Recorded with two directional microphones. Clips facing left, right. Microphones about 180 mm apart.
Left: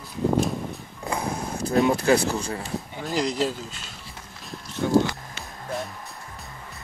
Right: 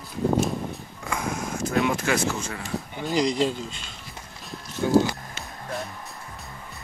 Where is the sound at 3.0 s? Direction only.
Centre (ahead or behind).